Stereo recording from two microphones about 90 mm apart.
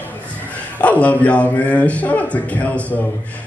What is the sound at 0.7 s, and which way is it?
A man's voice, 15° left (ahead or behind).